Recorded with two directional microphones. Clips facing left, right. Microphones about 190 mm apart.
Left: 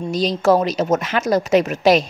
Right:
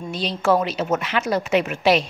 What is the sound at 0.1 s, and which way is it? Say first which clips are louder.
A woman's voice: left 4 dB; 40° left (ahead or behind).